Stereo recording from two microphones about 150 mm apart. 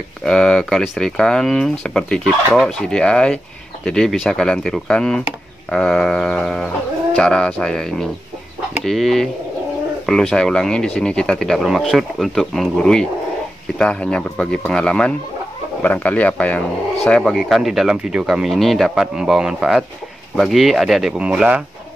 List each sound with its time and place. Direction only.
0.2 s speech: 5° left (ahead or behind)